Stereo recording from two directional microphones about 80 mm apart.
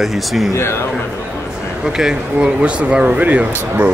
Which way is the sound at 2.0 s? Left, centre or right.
Centre.